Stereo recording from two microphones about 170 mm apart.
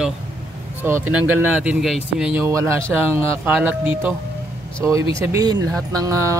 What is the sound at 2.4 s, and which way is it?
Speech, 15° right (ahead or behind).